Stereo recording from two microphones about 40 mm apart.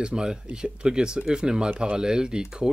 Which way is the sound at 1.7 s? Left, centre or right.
Right.